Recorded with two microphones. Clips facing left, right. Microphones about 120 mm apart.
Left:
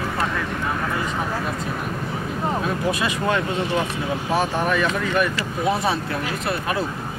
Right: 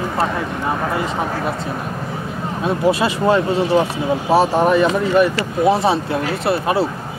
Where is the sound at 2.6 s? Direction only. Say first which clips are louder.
Right 6 dB; 30° right (ahead or behind).